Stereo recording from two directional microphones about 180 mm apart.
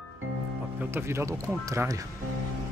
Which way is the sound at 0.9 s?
15° right (ahead or behind).